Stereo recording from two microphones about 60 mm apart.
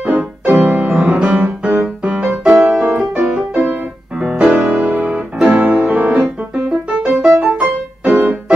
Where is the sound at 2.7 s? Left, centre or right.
Centre.